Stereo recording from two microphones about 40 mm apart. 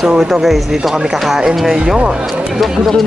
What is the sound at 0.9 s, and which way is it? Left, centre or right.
Speech, centre.